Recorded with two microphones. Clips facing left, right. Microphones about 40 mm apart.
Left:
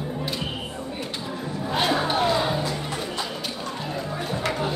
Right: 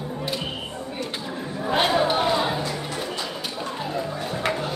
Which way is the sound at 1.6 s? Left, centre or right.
Centre.